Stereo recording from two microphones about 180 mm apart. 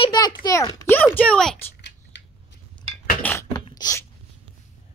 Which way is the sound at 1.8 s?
80° left.